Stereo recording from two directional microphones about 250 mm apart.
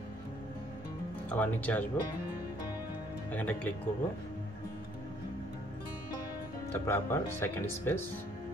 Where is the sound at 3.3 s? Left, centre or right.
Centre.